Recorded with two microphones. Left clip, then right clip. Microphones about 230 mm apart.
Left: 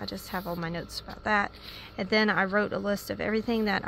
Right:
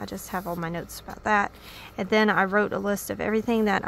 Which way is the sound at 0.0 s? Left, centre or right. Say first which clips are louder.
Right 3 dB; centre.